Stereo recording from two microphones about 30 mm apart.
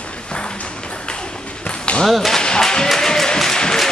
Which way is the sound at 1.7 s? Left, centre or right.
Left.